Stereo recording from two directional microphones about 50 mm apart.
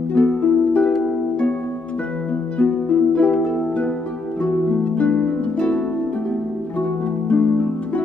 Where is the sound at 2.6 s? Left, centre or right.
Left.